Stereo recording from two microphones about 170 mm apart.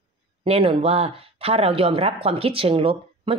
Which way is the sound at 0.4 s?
35° right (ahead or behind).